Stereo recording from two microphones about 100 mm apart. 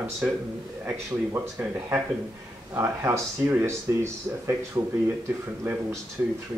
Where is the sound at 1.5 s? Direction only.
20° right (ahead or behind).